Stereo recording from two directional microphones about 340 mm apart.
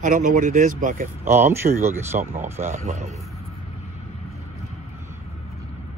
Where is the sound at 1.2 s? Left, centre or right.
Centre.